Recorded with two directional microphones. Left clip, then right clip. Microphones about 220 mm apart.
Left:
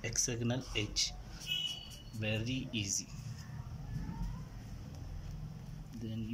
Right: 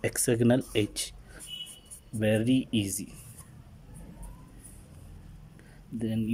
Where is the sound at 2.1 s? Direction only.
35° right (ahead or behind).